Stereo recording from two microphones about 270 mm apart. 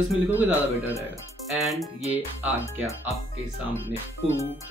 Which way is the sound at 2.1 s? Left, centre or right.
Centre.